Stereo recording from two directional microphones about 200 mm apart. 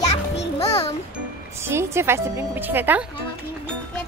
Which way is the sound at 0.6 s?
30° left (ahead or behind).